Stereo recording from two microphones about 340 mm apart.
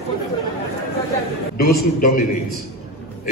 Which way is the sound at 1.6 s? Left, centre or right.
Left.